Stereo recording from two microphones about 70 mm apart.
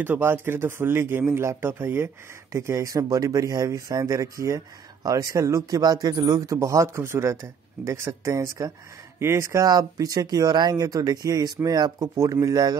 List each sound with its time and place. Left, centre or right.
0.0 s speech: right
2.5 s speech: right
5.8 s speech: right
6.4 s speech: right